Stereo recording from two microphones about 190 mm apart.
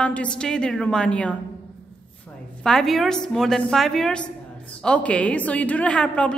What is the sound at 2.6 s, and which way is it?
A woman's voice, centre (ahead or behind).